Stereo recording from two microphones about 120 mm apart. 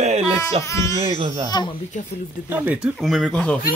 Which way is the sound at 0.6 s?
25° left (ahead or behind).